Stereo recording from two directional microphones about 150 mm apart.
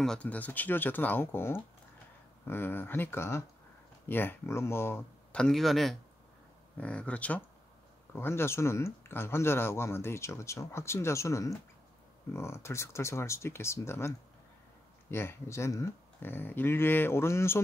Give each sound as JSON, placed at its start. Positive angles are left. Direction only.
{"t": 0.0, "sound": "speech", "side_deg": 5}